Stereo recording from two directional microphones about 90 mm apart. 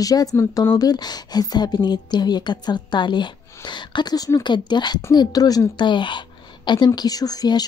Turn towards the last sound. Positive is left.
turn(degrees=45)  # may be behind; listen again after turning